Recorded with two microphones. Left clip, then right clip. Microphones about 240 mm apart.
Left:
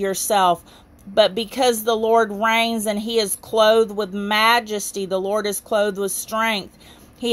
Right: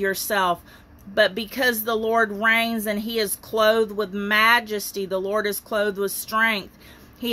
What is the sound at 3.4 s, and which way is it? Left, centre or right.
Speech, left.